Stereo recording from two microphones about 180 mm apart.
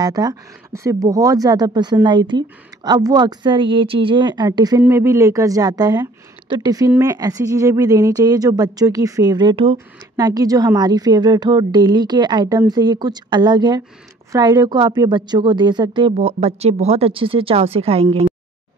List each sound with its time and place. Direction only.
0.0 s speech: 20° right (ahead or behind)